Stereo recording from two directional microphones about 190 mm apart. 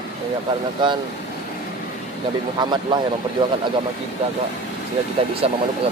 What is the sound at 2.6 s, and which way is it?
Speech, 25° right (ahead or behind).